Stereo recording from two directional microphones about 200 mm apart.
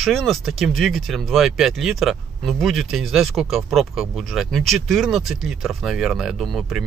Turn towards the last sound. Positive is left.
turn(degrees=0)  # may be behind; listen again after turning